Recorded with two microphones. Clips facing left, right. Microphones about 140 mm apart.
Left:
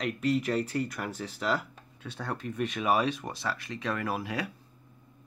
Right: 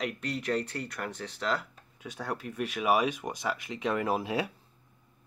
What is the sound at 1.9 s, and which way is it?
Speech, 10° right (ahead or behind).